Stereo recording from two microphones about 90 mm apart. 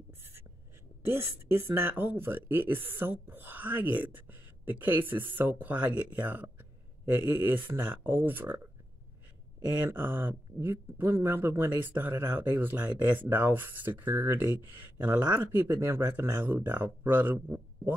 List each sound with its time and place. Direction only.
1.0 s speech: 25° right (ahead or behind)
9.8 s speech: 25° right (ahead or behind)